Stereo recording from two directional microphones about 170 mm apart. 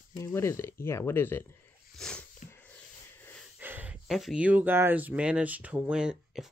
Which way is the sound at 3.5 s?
10° right (ahead or behind).